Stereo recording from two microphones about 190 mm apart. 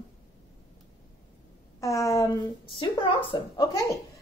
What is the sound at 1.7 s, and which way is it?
Speech, 15° left (ahead or behind).